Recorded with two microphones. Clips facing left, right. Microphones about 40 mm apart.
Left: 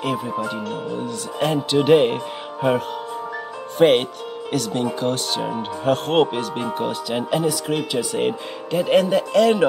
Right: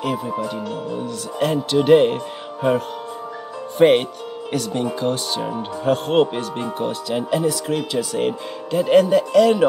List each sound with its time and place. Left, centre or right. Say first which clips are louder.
0.0 s speech: even; centre
3.7 s speech: right 1 dB; centre